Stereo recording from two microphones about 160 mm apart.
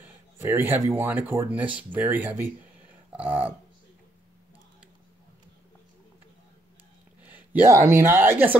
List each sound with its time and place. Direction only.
0.4 s speech: 15° right (ahead or behind)
3.2 s speech: 35° right (ahead or behind)
7.2 s speech: 10° right (ahead or behind)